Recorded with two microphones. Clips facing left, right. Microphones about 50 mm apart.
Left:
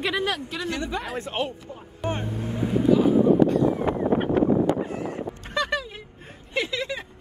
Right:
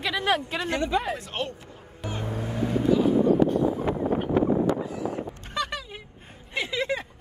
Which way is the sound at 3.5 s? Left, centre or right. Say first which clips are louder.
Left 3 dB; left.